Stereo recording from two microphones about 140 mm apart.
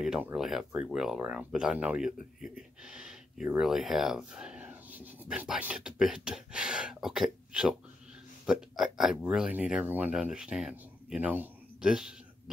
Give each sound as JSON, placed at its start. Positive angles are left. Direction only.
{"t": 0.0, "sound": "speech", "side_deg": -5}